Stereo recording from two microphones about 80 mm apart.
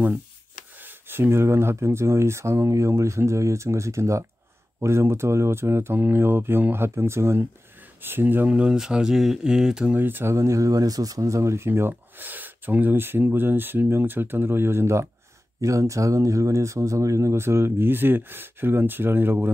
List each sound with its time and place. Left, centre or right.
0.7 s speech: right
8.5 s speech: centre
9.9 s speech: right